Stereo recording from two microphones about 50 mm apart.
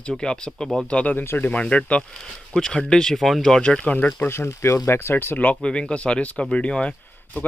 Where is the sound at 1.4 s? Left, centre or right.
Left.